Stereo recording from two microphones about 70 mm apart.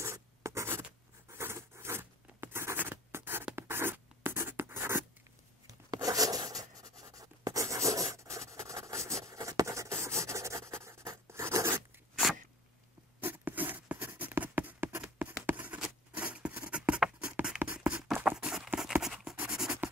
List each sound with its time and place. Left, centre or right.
0.0 s writing: right
1.3 s zipper: right
3.5 s writing: right
5.7 s writing: right
13.2 s a sound: right
14.1 s writing: right
14.6 s a sound: right
16.7 s writing: centre
17.2 s a sound: centre
19.5 s scratch: centre